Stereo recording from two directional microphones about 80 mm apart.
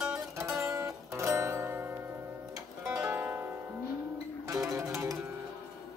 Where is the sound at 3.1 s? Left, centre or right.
Right.